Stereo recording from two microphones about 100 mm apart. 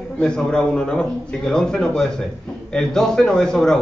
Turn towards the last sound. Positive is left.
turn(degrees=5)  # may be behind; listen again after turning